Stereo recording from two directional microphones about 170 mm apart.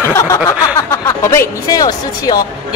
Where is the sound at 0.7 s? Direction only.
15° left (ahead or behind).